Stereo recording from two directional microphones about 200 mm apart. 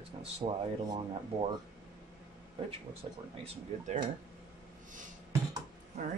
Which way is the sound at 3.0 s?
30° right (ahead or behind).